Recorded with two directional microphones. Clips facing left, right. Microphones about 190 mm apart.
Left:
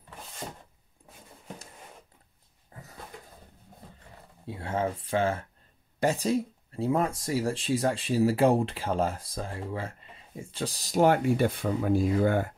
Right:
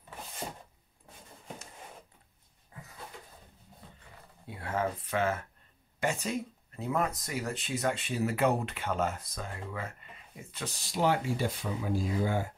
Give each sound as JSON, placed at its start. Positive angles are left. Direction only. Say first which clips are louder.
{"t": 2.7, "sound": "dog", "louder": "left 2 dB", "side_deg": 40}
{"t": 4.5, "sound": "speech", "louder": "left 3 dB", "side_deg": 25}